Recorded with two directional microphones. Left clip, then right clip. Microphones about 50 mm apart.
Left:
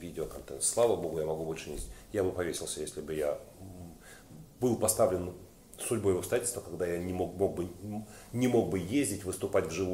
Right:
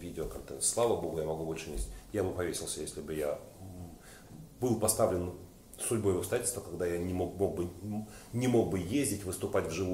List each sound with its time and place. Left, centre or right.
0.0 s speech: left
4.6 s speech: left
4.9 s speech: centre
6.0 s speech: left